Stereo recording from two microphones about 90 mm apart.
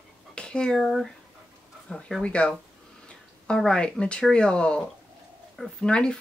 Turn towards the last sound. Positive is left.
turn(degrees=10)  # may be behind; listen again after turning